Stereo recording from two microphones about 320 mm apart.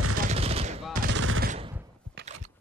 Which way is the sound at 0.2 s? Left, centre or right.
Centre.